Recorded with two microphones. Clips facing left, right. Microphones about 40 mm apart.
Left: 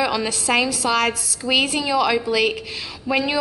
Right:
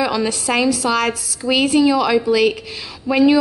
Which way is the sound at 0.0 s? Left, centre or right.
Centre.